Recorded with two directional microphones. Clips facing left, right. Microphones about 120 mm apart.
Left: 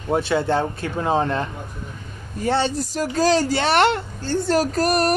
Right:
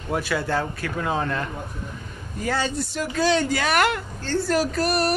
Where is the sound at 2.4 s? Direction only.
30° left (ahead or behind).